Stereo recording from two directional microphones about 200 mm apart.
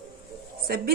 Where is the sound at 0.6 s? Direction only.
50° right (ahead or behind).